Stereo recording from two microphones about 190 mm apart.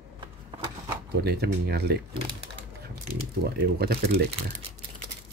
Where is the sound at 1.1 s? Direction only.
55° right (ahead or behind).